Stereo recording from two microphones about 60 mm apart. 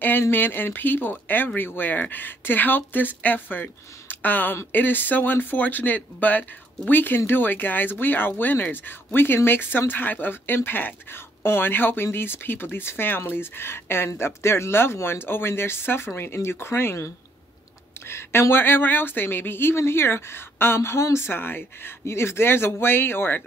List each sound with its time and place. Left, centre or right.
0.2 s speech: left